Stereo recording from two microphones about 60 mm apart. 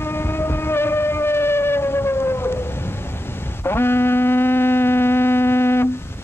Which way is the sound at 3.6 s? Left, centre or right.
Left.